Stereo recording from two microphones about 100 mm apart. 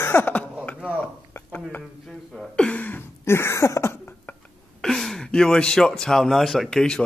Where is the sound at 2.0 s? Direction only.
Centre (ahead or behind); by 4.4 s 25° left (ahead or behind).